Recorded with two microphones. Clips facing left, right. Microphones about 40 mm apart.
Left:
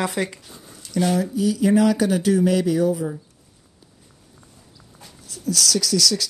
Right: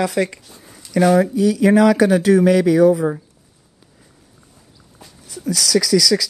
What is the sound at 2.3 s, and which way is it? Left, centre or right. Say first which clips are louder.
Speech: right 6 dB; right.